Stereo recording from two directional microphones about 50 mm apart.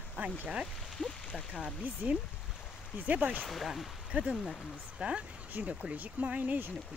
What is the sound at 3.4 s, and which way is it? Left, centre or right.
Speech, centre.